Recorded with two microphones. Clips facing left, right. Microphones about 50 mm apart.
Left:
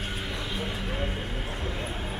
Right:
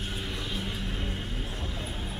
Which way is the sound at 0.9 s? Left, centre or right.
Left.